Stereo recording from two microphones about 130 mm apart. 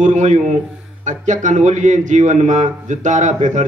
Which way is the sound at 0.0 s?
70° right (ahead or behind).